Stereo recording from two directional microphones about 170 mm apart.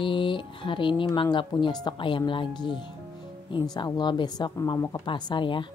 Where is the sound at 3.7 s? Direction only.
25° left (ahead or behind).